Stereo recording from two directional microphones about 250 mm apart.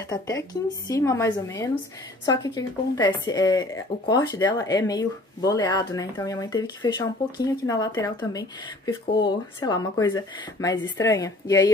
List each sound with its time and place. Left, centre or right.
0.1 s speech: centre